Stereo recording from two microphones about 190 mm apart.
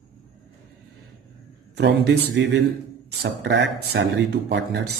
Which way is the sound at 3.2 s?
65° right (ahead or behind).